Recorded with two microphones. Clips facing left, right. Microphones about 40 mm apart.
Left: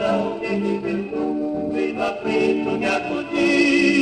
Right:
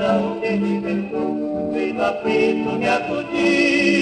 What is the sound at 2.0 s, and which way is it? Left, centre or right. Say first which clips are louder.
Music: right 5 dB; right.